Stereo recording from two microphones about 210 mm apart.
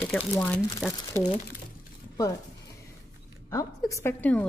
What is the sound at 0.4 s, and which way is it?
Speech, 5° left (ahead or behind).